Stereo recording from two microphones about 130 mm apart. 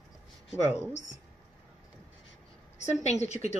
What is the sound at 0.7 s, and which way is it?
Speech, 20° left (ahead or behind).